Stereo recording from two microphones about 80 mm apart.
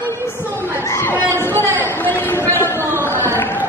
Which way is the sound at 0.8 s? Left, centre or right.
Left.